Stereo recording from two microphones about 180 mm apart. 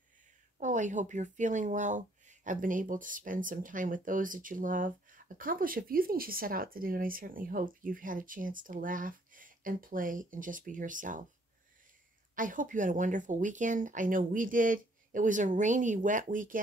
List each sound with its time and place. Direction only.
0.6 s speech: 45° right (ahead or behind)
12.4 s speech: 45° right (ahead or behind)